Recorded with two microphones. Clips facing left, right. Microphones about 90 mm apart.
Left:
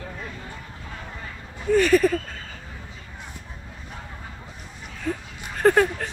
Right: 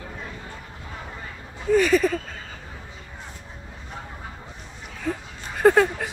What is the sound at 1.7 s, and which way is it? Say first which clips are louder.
Speech: left 1 dB; centre (ahead or behind).